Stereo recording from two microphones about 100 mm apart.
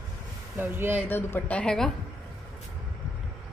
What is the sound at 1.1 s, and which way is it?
Speech, 20° left (ahead or behind).